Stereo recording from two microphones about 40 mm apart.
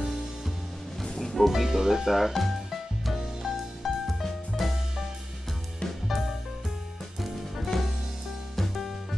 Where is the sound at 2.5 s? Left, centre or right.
Centre.